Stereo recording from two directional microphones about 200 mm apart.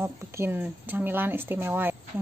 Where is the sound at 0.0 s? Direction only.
15° right (ahead or behind).